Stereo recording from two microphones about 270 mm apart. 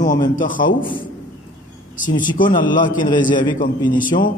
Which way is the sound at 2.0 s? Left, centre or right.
Left.